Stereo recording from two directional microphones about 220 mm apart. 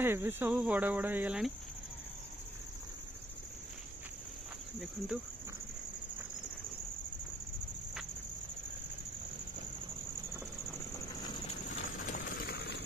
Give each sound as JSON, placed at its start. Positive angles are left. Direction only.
{"t": 0.0, "sound": "speech", "side_deg": -10}
{"t": 4.7, "sound": "speech", "side_deg": -5}
{"t": 12.0, "sound": "a sound", "side_deg": 45}